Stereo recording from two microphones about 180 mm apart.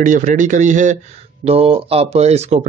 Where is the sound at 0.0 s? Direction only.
45° right (ahead or behind).